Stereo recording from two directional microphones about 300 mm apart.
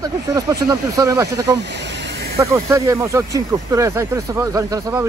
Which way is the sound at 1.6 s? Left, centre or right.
Right.